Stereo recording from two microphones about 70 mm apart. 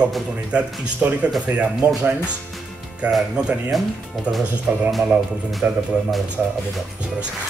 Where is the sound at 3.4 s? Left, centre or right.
Centre.